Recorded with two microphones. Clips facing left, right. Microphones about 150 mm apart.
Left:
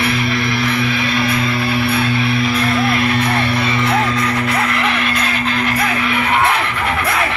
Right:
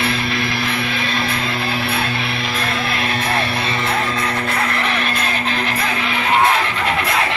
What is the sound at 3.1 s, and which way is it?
Music, 25° right (ahead or behind).